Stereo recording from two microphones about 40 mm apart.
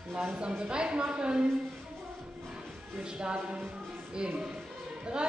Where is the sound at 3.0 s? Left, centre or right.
Right.